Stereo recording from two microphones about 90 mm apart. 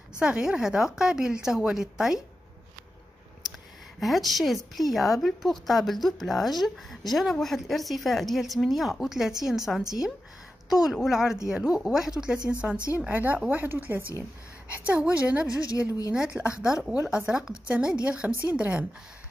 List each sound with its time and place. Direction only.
0.2 s speech: 10° right (ahead or behind)
4.0 s speech: centre (ahead or behind)
15.4 s a woman's voice: 40° left (ahead or behind)
16.1 s speech: 10° right (ahead or behind)